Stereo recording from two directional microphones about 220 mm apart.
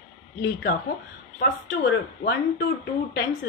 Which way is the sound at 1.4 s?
50° left (ahead or behind).